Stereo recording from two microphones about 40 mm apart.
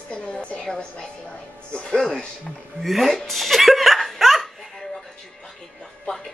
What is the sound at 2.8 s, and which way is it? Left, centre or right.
Speech, centre.